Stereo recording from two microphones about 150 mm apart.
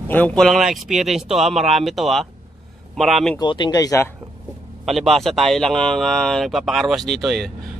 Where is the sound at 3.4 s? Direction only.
30° left (ahead or behind).